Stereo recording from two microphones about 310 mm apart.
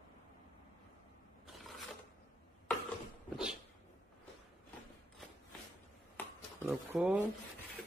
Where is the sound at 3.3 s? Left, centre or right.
Centre.